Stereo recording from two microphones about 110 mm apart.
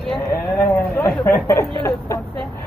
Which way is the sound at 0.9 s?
20° left (ahead or behind).